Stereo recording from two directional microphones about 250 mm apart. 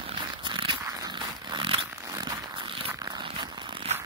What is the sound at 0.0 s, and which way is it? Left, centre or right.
Zipper, right.